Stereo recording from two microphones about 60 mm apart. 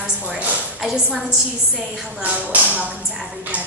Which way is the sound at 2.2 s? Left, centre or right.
Right.